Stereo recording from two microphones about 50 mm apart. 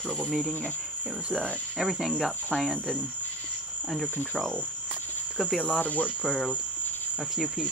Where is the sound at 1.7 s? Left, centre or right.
Centre.